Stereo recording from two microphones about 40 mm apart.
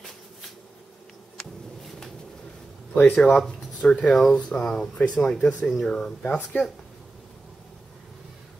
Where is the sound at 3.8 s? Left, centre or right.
Left.